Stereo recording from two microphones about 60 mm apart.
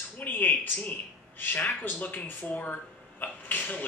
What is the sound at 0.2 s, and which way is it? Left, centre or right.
Speech, left.